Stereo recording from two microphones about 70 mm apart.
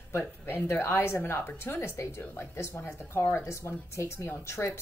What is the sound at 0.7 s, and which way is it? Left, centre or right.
Speech, left.